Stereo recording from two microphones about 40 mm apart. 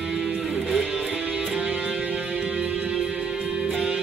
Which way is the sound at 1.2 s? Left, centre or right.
Right.